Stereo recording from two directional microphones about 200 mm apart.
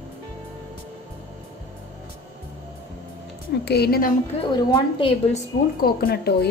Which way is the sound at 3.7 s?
50° left (ahead or behind).